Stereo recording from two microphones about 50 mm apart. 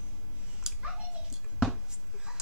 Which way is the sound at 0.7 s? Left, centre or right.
Centre.